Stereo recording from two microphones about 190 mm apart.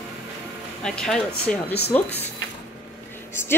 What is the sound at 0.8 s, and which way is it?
A woman's voice, 5° left (ahead or behind).